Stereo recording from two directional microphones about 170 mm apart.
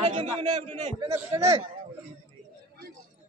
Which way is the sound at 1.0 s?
15° right (ahead or behind).